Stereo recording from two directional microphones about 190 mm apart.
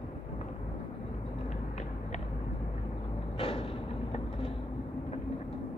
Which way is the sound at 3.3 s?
30° left (ahead or behind).